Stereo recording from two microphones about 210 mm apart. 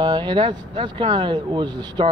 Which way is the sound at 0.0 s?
20° right (ahead or behind).